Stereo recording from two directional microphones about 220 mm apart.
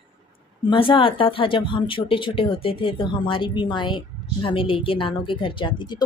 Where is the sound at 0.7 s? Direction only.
25° left (ahead or behind).